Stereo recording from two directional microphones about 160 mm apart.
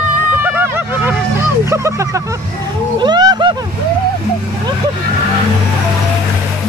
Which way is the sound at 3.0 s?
25° right (ahead or behind).